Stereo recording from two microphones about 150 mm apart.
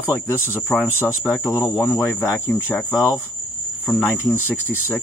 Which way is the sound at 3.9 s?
15° left (ahead or behind).